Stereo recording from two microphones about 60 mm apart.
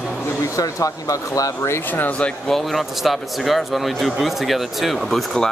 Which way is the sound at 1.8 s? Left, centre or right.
Left.